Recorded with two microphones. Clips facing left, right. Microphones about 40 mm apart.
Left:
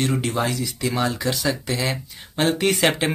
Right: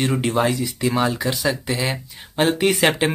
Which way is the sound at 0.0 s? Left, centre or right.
Centre.